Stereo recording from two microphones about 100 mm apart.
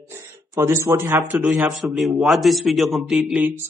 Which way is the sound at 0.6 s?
25° right (ahead or behind).